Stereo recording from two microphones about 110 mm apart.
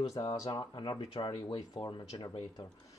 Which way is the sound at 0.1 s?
35° left (ahead or behind).